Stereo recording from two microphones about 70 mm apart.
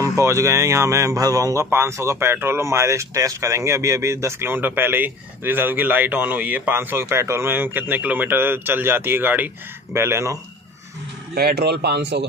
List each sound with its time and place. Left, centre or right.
0.0 s speech: right
1.6 s speech: right